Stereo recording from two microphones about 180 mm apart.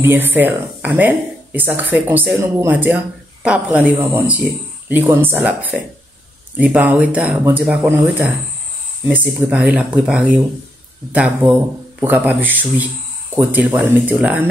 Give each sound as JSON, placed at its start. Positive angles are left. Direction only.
{"t": 0.0, "sound": "speech", "side_deg": -10}